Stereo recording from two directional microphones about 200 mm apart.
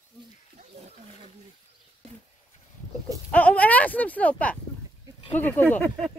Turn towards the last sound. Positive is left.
turn(degrees=5)  # may be behind; listen again after turning